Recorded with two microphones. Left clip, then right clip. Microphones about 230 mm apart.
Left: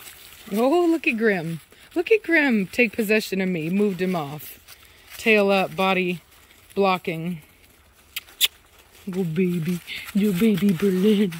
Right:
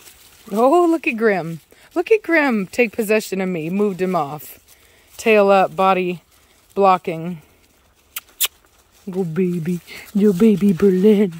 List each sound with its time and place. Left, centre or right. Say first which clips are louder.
0.5 s speech: right 6 dB; centre
8.1 s a sound: left 2 dB; centre
9.1 s speech: right 4 dB; centre